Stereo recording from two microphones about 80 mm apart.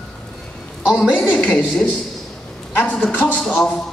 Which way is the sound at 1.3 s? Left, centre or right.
Centre.